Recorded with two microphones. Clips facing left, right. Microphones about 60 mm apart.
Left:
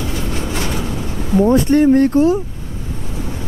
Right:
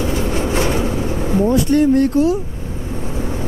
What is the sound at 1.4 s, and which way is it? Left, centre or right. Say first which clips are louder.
A woman's voice: left 3 dB; left.